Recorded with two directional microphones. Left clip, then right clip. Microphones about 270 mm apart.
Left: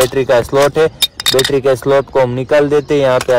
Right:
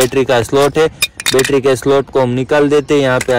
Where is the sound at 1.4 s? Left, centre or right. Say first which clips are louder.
Right 1 dB; centre.